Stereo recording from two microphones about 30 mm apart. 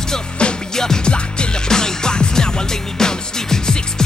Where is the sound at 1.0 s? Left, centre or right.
Left.